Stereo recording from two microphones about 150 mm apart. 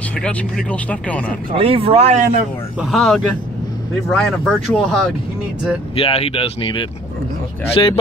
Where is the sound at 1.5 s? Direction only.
40° right (ahead or behind).